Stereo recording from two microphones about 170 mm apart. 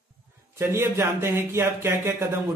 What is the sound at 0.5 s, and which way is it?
Speech, 15° right (ahead or behind).